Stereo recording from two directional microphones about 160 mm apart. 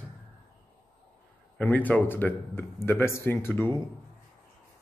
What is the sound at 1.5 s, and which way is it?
Speech, 10° left (ahead or behind).